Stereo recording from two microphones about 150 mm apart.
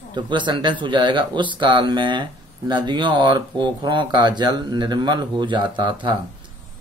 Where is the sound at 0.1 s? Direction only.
30° right (ahead or behind).